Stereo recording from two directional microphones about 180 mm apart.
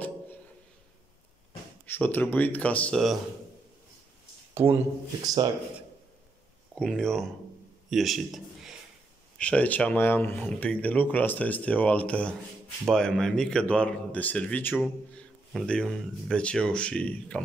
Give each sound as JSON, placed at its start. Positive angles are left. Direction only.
{"t": 1.9, "sound": "speech", "side_deg": 10}
{"t": 4.6, "sound": "speech", "side_deg": -15}
{"t": 6.7, "sound": "a man's voice", "side_deg": 5}